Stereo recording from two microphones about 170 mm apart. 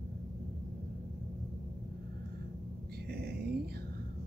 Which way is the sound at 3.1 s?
65° right (ahead or behind).